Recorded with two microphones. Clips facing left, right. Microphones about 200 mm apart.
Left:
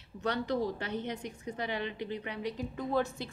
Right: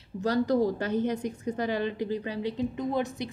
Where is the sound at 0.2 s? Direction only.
40° right (ahead or behind).